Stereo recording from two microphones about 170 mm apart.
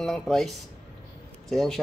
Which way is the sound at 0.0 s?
5° left (ahead or behind).